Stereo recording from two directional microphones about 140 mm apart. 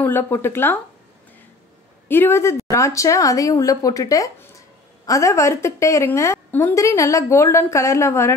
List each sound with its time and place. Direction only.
0.0 s speech: 15° left (ahead or behind)
2.0 s a woman's voice: 15° left (ahead or behind)